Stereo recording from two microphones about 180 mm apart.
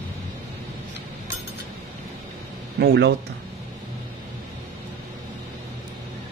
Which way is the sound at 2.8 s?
70° right (ahead or behind).